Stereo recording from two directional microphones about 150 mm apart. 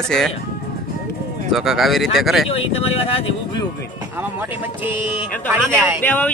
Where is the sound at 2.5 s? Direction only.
40° left (ahead or behind).